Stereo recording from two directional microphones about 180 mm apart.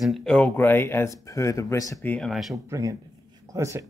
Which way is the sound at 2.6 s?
15° right (ahead or behind).